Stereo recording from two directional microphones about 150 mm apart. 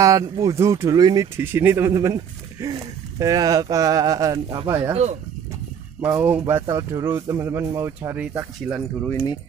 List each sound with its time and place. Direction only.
0.0 s speech: 25° right (ahead or behind)
5.9 s speech: 15° right (ahead or behind)
9.1 s speech: 25° left (ahead or behind)